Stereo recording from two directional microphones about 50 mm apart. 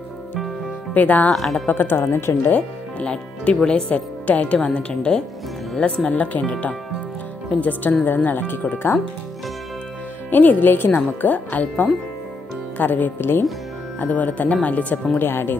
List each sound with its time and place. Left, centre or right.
0.9 s speech: left
1.3 s speech: centre
1.7 s speech: left
2.0 s speech: left
2.5 s speech: left
4.3 s speech: left
7.6 s speech: left
10.3 s speech: left
15.1 s speech: left